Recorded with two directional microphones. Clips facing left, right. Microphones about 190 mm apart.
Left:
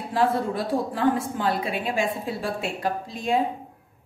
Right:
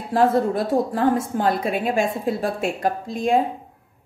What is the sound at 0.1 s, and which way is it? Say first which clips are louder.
A woman's voice: right 5 dB; 45° right (ahead or behind).